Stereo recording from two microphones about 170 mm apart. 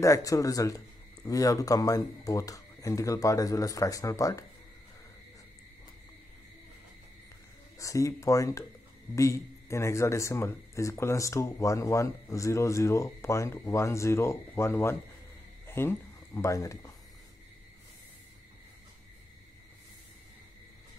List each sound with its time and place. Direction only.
0.0 s speech: 20° left (ahead or behind)
7.8 s speech: 20° left (ahead or behind)